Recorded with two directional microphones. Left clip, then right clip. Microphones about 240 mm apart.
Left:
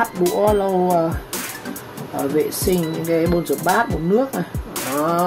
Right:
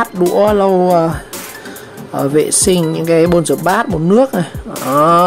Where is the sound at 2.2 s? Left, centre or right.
Right.